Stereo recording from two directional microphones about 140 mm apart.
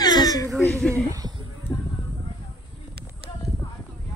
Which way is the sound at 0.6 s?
10° left (ahead or behind).